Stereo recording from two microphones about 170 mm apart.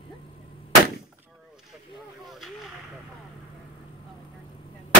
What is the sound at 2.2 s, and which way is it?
Vehicle, centre (ahead or behind).